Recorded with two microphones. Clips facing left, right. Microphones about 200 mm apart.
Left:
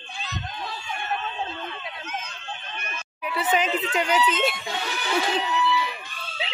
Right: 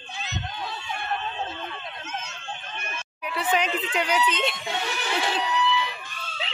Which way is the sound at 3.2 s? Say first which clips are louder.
Left 1 dB; 5° left (ahead or behind).